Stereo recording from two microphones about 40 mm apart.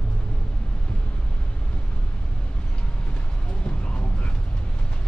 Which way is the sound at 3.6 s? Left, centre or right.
Left.